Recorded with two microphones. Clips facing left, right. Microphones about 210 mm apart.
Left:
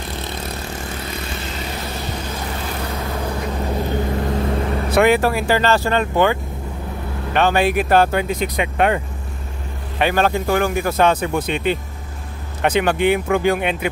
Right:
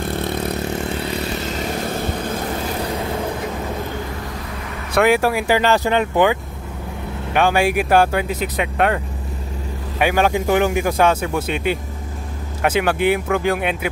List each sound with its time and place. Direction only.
0.0 s vehicle: 55° right (ahead or behind)
1.1 s vehicle: 40° right (ahead or behind)
4.3 s vehicle: 30° left (ahead or behind)
5.1 s a man's voice: 10° right (ahead or behind)
7.3 s a man's voice: 10° right (ahead or behind)
9.9 s a man's voice: 10° right (ahead or behind)